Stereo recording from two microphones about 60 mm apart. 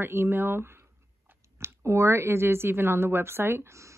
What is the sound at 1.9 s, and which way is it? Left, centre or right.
A woman's voice, right.